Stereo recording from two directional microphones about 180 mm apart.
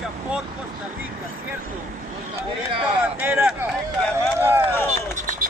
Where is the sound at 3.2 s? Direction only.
5° right (ahead or behind).